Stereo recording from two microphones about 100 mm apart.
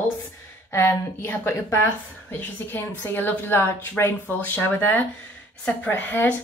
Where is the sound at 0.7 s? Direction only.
25° left (ahead or behind).